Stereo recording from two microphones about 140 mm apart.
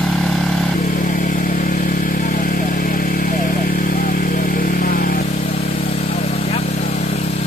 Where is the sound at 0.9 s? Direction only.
75° left (ahead or behind); by 5.2 s 90° left.